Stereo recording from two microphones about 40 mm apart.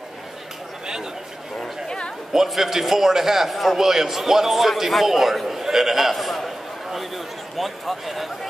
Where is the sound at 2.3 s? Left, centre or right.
Centre.